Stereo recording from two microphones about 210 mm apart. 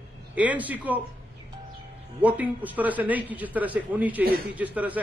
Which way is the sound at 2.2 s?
5° right (ahead or behind).